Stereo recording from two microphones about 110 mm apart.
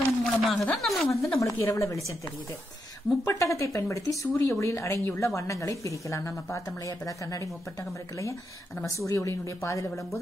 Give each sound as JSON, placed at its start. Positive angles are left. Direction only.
{"t": 0.2, "sound": "speech", "side_deg": 5}
{"t": 1.4, "sound": "speech", "side_deg": 25}
{"t": 3.3, "sound": "speech", "side_deg": 30}
{"t": 8.8, "sound": "speech", "side_deg": 30}